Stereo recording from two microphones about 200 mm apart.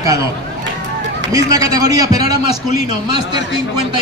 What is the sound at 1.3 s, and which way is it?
A man's voice, 15° right (ahead or behind).